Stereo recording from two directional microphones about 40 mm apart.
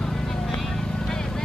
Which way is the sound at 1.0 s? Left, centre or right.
Centre.